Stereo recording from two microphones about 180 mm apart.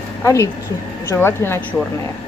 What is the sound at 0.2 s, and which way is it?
A woman's voice, 15° left (ahead or behind).